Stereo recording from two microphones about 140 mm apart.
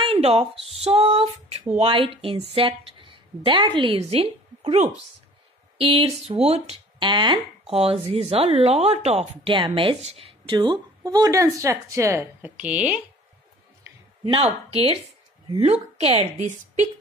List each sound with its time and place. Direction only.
0.0 s a sound: 40° right (ahead or behind)
0.8 s a woman's voice: 40° right (ahead or behind); by 13.0 s 10° right (ahead or behind)
14.2 s a woman's voice: 40° right (ahead or behind)